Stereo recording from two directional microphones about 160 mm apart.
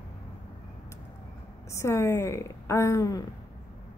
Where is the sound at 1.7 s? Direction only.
15° left (ahead or behind).